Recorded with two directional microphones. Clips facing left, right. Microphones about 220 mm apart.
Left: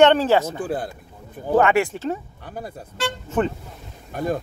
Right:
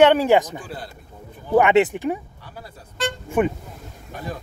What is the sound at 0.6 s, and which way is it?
Speech, 50° left (ahead or behind).